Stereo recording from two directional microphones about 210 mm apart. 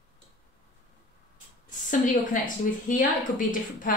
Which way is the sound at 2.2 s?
40° left (ahead or behind).